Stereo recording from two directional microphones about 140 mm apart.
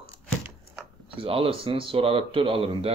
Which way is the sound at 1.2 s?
40° right (ahead or behind).